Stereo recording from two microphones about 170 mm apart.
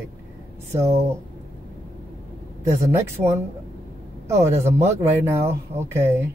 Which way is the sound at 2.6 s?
15° right (ahead or behind).